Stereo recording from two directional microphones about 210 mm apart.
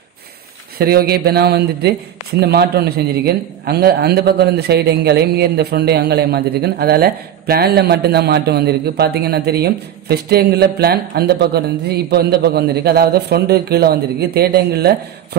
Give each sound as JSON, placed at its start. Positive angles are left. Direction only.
{"t": 0.7, "sound": "a man's voice", "side_deg": -45}